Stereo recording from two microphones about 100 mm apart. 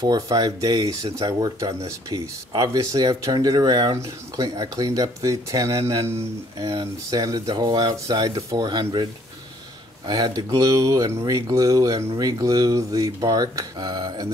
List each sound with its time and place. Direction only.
0.0 s speech: 40° right (ahead or behind)
8.6 s speech: 45° right (ahead or behind)